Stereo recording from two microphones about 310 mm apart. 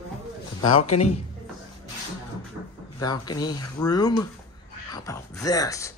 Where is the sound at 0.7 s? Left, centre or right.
Left.